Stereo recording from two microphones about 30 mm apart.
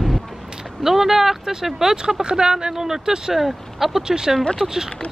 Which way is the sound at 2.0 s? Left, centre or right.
Right.